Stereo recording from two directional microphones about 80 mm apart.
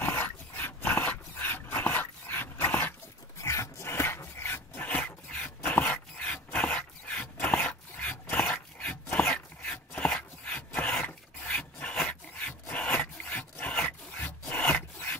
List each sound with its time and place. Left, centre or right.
0.0 s dog: left
3.3 s dog: left
4.8 s a sound: centre
8.5 s dog: centre
10.1 s a sound: centre
11.1 s rub: centre